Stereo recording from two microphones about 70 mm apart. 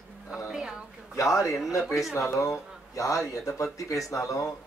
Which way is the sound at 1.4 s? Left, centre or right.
Centre.